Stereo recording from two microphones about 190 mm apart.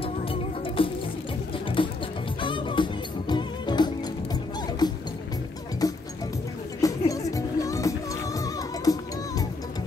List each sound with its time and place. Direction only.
0.0 s music: 30° left (ahead or behind)